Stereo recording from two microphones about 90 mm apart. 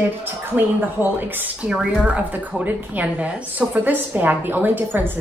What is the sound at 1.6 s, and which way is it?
A woman's voice, 10° right (ahead or behind).